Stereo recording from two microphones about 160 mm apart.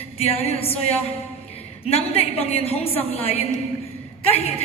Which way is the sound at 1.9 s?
40° left (ahead or behind).